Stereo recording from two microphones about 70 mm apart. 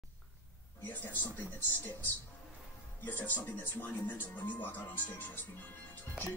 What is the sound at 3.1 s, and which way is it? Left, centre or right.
Music, left.